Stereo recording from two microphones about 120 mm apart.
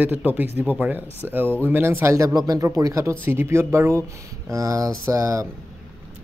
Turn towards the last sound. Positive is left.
turn(degrees=-25)  # may be behind; listen again after turning